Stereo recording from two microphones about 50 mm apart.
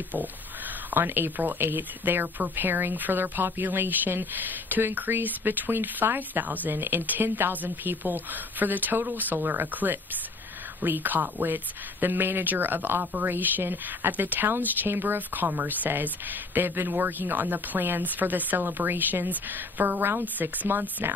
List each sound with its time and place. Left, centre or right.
0.8 s speech: right
6.7 s speech: right
13.0 s speech: right
13.3 s speech: right